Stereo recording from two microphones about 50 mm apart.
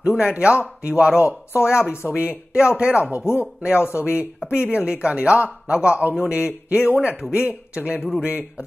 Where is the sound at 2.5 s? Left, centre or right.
Centre.